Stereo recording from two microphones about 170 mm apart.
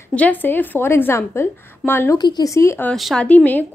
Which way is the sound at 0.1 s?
10° left (ahead or behind).